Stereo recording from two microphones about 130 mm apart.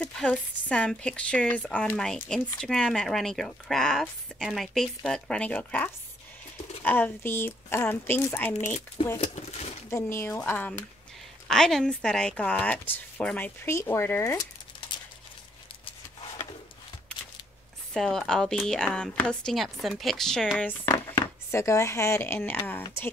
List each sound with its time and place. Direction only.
0.0 s speech: 5° left (ahead or behind)
8.6 s speech: 60° left (ahead or behind)
9.8 s speech: 20° left (ahead or behind)
17.9 s speech: 5° left (ahead or behind)